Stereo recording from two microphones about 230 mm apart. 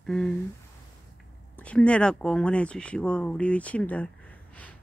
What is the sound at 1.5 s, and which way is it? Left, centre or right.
Speech, centre.